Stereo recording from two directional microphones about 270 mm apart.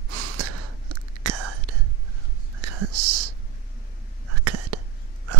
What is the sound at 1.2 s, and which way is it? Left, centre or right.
Whispering, right.